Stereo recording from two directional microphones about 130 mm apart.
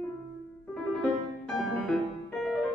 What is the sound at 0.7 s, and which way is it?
Music, 5° left (ahead or behind).